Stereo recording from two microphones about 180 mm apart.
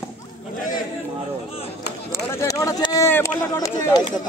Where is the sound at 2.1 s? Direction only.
15° left (ahead or behind).